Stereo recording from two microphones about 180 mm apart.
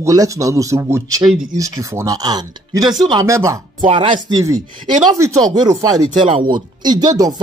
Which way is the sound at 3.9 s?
30° right (ahead or behind).